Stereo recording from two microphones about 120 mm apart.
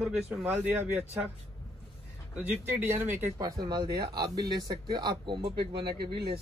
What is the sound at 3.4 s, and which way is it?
A man's voice, 35° right (ahead or behind).